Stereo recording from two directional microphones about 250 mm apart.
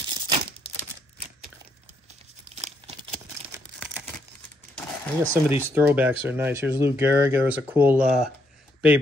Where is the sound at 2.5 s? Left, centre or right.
Right.